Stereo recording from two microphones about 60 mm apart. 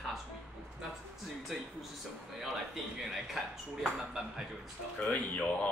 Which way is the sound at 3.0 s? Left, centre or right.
Centre.